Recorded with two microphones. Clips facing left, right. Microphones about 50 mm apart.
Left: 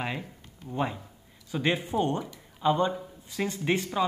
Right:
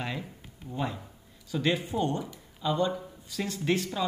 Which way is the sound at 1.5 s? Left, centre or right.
Left.